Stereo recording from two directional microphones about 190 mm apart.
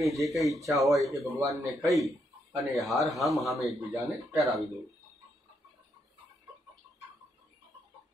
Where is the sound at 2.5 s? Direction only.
Centre (ahead or behind).